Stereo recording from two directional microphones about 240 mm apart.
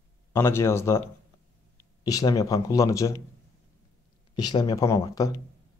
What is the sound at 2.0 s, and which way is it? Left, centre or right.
Speech, centre.